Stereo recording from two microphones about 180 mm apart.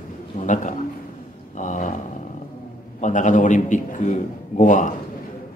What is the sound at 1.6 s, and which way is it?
Roaring cats, 45° left (ahead or behind).